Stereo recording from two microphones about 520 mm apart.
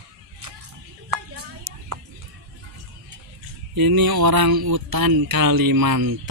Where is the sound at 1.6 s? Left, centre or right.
Right.